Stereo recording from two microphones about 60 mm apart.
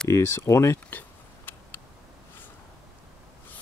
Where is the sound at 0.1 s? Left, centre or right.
Left.